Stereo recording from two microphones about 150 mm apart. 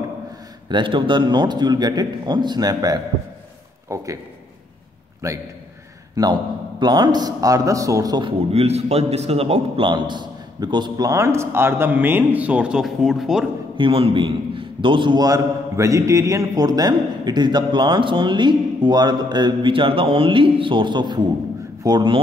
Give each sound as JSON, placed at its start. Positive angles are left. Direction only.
{"t": 0.7, "sound": "a man's voice", "side_deg": -30}
{"t": 5.2, "sound": "a man's voice", "side_deg": -20}
{"t": 13.7, "sound": "a man's voice", "side_deg": -35}